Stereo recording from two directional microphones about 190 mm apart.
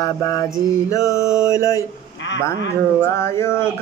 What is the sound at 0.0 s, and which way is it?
Mantra, 20° left (ahead or behind).